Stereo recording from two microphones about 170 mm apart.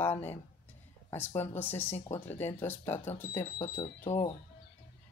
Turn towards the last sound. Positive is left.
turn(degrees=30)  # may be behind; listen again after turning